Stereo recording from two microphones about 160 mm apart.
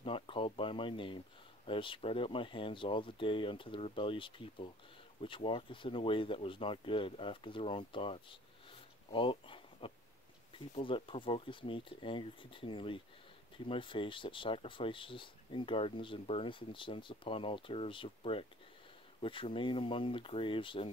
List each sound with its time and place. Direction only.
0.0 s speech: 35° left (ahead or behind)